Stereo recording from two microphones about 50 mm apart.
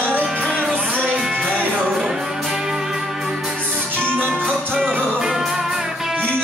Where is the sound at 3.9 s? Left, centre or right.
Right.